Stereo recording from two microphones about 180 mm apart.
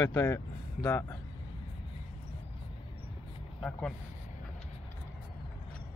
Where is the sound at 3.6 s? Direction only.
5° left (ahead or behind).